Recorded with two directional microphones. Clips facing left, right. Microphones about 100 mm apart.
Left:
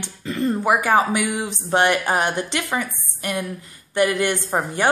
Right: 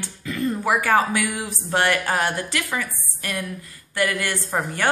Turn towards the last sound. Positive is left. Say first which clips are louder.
# left 3 dB
turn(degrees=20)  # may be behind; listen again after turning